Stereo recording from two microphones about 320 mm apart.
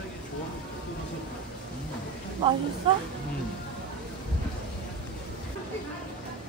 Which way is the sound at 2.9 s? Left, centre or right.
Centre.